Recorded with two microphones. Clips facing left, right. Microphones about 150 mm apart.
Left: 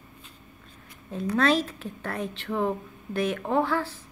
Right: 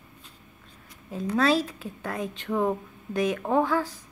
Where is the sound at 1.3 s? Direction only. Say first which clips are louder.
Even; 10° right (ahead or behind).